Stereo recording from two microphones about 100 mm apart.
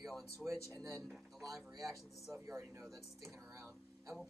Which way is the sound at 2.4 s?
30° right (ahead or behind).